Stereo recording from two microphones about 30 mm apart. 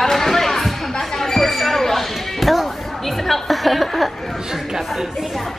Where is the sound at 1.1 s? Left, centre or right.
Centre.